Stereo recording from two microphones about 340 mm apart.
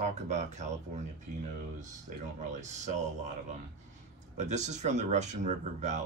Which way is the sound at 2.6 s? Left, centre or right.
Right.